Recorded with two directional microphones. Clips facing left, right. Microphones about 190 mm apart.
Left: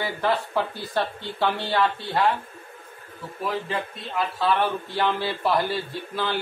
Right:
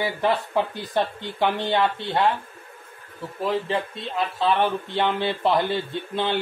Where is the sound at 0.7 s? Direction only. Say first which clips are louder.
Right 2 dB; 15° right (ahead or behind).